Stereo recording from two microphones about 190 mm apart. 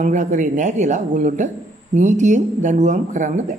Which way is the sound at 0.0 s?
45° right (ahead or behind).